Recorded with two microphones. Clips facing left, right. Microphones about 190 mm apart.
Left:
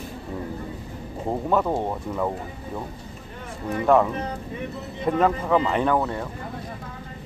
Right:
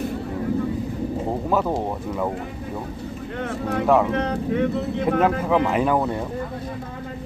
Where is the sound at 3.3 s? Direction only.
75° right (ahead or behind).